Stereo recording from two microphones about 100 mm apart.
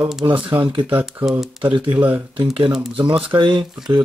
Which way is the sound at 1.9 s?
15° right (ahead or behind).